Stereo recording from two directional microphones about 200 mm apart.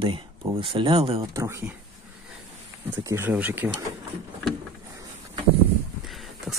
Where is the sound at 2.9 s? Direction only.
15° right (ahead or behind).